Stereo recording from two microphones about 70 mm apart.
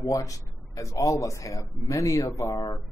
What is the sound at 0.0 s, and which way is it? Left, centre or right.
A man's voice, left.